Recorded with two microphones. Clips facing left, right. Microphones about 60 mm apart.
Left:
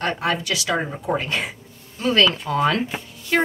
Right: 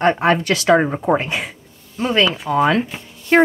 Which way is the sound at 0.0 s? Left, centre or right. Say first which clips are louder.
Right 8 dB; right.